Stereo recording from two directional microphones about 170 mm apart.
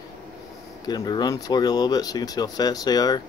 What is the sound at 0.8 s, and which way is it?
Speech, 25° left (ahead or behind).